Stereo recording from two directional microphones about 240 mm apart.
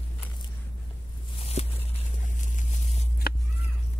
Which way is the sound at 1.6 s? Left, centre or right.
Left.